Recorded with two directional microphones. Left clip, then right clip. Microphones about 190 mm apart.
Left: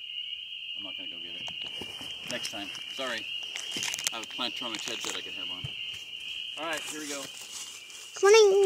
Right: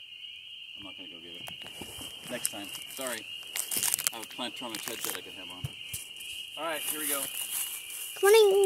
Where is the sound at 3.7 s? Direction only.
15° right (ahead or behind).